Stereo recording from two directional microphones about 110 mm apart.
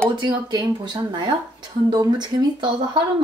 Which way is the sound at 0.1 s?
40° right (ahead or behind).